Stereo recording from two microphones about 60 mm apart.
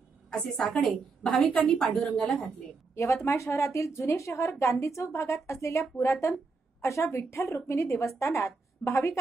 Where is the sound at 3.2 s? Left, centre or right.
Left.